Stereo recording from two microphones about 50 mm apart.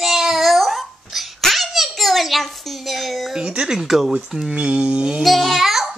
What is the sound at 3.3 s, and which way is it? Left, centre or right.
Speech, centre.